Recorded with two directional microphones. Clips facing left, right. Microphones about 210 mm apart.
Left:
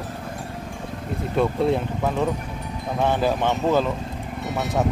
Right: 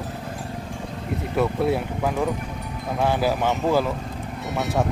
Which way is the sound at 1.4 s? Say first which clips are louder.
Left 1 dB; 5° right (ahead or behind).